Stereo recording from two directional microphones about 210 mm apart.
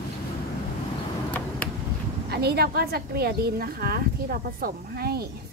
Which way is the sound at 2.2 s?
50° right (ahead or behind).